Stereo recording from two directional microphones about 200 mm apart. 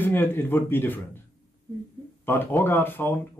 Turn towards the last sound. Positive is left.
turn(degrees=10)  # may be behind; listen again after turning